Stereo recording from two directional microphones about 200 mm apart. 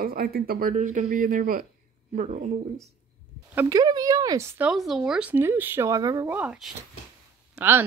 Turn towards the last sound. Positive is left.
turn(degrees=-10)  # may be behind; listen again after turning